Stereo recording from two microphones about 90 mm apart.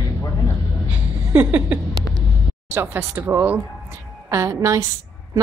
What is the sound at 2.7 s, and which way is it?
Speech, 25° right (ahead or behind).